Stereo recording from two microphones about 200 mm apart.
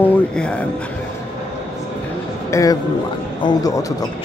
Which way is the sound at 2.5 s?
15° left (ahead or behind).